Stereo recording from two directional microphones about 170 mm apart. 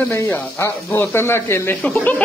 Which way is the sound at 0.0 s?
10° left (ahead or behind).